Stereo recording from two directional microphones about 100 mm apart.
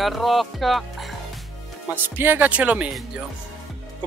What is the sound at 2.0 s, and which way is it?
Speech, 20° right (ahead or behind).